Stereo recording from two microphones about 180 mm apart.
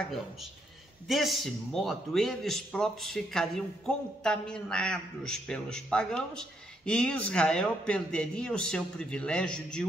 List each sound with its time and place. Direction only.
1.0 s a man's voice: centre (ahead or behind)